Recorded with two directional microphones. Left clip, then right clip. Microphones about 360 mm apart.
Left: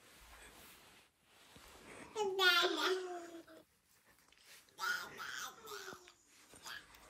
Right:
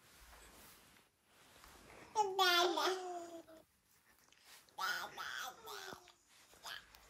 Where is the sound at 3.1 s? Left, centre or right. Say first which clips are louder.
Right 1 dB; centre.